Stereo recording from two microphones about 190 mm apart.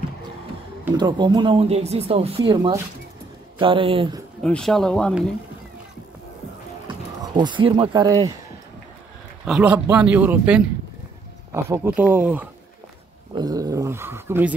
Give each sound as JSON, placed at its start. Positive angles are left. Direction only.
{"t": 0.9, "sound": "speech", "side_deg": -25}
{"t": 4.4, "sound": "speech", "side_deg": 5}
{"t": 7.3, "sound": "speech", "side_deg": -25}
{"t": 9.4, "sound": "speech", "side_deg": -5}
{"t": 13.3, "sound": "speech", "side_deg": -20}